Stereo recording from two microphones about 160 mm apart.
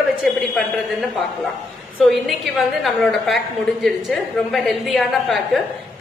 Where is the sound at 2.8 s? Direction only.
Centre (ahead or behind).